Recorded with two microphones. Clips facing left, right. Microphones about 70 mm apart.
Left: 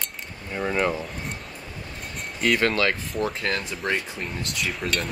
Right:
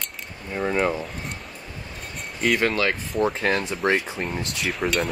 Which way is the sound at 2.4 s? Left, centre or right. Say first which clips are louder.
Even; centre.